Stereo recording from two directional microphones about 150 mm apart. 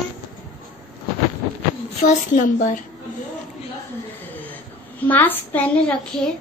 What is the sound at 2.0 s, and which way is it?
Speech, 55° left (ahead or behind).